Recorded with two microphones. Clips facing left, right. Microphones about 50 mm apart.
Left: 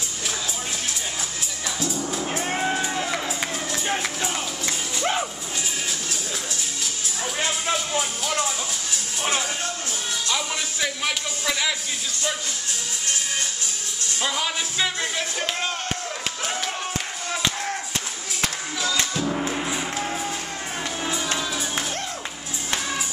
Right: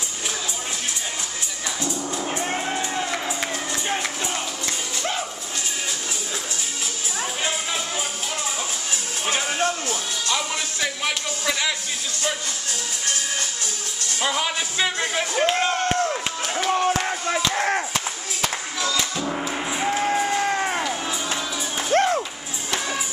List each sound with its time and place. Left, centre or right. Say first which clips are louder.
1.8 s music: left 1 dB; centre
10.3 s music: right 2 dB; centre
14.2 s speech: right 2 dB; centre
17.6 s chop: right 7 dB; right
18.9 s gong: even; centre
19.8 s music: right 6 dB; right
20.2 s music: right 8 dB; right
21.9 s music: right 13 dB; right